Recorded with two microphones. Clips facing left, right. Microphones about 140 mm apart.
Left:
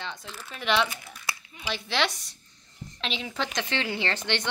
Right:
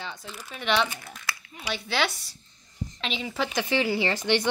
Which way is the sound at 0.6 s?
Centre (ahead or behind).